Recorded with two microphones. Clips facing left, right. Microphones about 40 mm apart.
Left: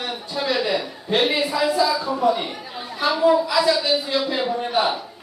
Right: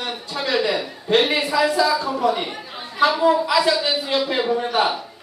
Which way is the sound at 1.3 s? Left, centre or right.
Right.